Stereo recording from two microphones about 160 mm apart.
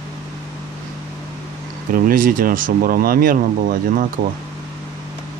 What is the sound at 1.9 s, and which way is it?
Speech, 60° right (ahead or behind).